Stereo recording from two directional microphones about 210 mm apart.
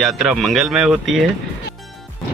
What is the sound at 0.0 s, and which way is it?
Speech, centre (ahead or behind).